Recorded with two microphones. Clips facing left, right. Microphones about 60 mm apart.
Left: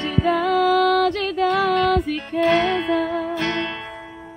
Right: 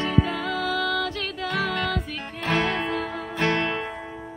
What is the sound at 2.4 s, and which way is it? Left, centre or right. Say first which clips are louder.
Music: left 6 dB; right.